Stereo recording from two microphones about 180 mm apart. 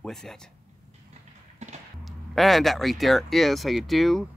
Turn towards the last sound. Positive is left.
turn(degrees=0)  # may be behind; listen again after turning